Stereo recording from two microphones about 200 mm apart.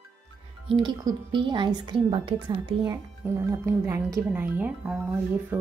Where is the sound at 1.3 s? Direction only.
25° right (ahead or behind).